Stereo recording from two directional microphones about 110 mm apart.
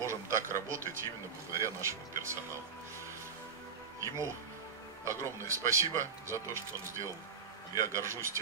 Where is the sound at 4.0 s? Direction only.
30° right (ahead or behind).